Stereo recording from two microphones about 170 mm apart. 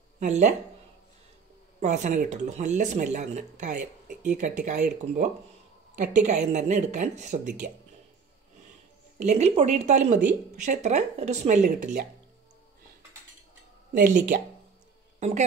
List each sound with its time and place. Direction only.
0.2 s speech: 45° right (ahead or behind)
1.8 s speech: 45° right (ahead or behind)
9.2 s speech: 40° right (ahead or behind)
13.9 s speech: 55° right (ahead or behind)
15.1 s speech: 45° right (ahead or behind)